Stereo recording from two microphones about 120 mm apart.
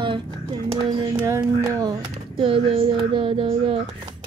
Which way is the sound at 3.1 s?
50° right (ahead or behind).